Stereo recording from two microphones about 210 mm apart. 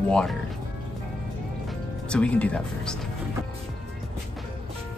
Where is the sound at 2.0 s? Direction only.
5° left (ahead or behind).